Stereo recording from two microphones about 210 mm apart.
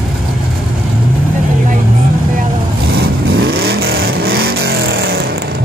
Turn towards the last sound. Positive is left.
turn(degrees=-50)  # may be behind; listen again after turning